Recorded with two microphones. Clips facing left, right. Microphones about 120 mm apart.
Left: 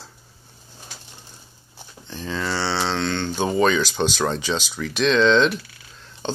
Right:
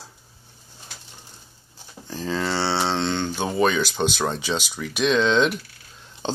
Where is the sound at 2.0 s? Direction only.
35° right (ahead or behind).